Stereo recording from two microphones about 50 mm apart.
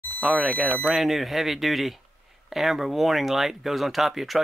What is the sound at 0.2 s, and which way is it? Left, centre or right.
Speech, centre.